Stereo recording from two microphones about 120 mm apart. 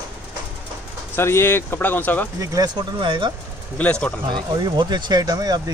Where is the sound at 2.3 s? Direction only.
30° right (ahead or behind).